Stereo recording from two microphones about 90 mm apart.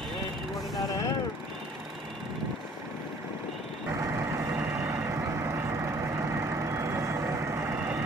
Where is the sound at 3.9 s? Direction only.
30° right (ahead or behind).